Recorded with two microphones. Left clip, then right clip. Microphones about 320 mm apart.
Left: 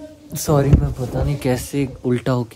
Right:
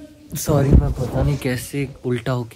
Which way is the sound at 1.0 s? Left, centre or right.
Centre.